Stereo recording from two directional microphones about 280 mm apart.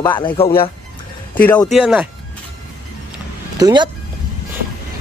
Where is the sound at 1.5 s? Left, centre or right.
Centre.